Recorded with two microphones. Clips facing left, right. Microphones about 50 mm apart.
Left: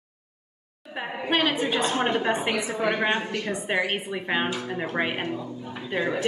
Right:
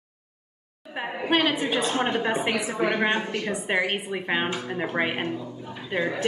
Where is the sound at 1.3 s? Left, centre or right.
Centre.